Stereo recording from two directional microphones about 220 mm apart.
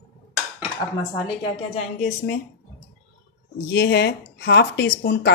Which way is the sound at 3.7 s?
50° left (ahead or behind).